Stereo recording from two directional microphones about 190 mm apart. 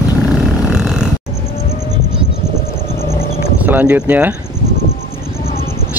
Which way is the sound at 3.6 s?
10° right (ahead or behind).